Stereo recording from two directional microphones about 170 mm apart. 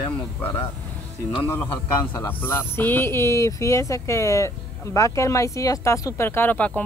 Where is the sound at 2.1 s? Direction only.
15° left (ahead or behind).